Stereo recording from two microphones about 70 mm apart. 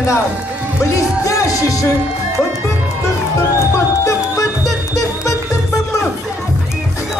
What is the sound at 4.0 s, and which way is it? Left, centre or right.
Music, left.